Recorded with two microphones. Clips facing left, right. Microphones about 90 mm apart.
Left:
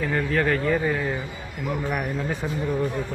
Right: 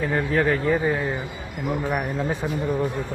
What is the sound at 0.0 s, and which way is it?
Speech, 15° right (ahead or behind).